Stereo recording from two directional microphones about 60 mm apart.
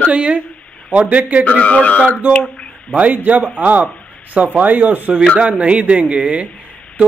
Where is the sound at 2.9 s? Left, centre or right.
Right.